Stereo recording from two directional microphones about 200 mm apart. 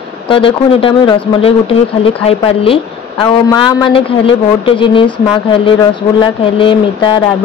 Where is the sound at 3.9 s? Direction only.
25° left (ahead or behind).